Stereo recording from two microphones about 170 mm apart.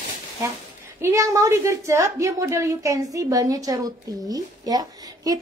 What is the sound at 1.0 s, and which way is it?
A woman's voice, 20° right (ahead or behind).